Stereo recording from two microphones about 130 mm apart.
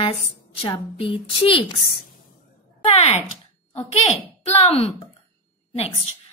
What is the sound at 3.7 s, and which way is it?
A woman's voice, 55° left (ahead or behind).